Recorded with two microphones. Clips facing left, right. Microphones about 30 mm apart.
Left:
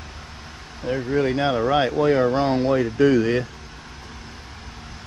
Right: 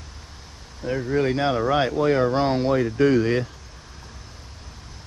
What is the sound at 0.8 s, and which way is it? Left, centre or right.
Speech, left.